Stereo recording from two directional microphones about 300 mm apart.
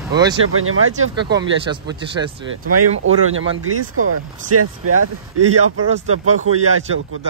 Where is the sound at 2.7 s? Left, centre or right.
Right.